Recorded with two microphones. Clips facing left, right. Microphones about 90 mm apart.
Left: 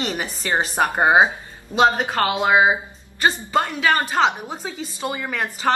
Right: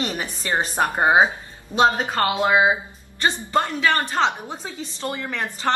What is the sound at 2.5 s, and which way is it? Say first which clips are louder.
Speech: left 3 dB; 20° left (ahead or behind).